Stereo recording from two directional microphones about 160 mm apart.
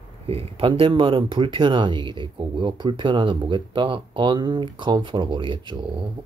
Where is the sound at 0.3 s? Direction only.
35° right (ahead or behind).